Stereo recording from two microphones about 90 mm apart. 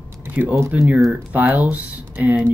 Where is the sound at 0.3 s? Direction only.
15° right (ahead or behind).